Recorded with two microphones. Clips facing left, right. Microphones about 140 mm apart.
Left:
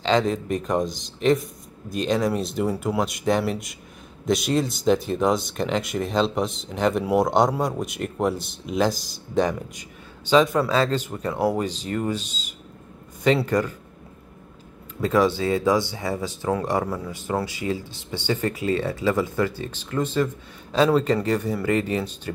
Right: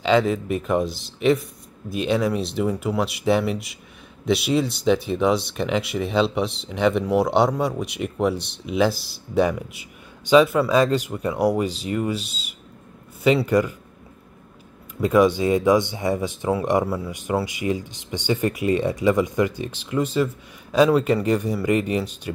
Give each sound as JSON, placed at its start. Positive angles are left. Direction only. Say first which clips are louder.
{"t": 0.0, "sound": "speech", "louder": "right 2 dB", "side_deg": -5}
{"t": 15.0, "sound": "speech", "louder": "right 3 dB", "side_deg": -15}
{"t": 16.8, "sound": "speech", "louder": "right 2 dB", "side_deg": -5}